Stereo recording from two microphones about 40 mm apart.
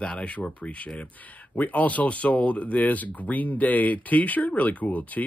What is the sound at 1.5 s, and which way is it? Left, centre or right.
Speech, left.